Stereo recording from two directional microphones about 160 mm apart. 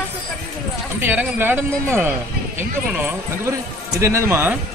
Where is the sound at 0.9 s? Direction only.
15° right (ahead or behind).